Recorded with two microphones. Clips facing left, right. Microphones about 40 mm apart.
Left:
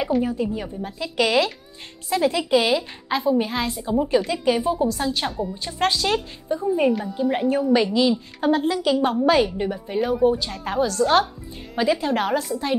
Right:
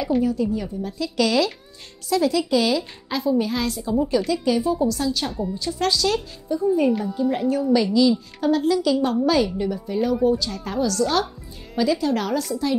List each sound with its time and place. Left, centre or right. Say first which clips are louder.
0.2 s a woman's voice: right 2 dB; left
6.9 s a woman's voice: right 1 dB; centre
7.2 s a woman's voice: even; left